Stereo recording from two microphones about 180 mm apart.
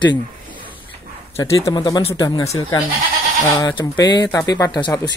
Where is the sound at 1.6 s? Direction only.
20° left (ahead or behind).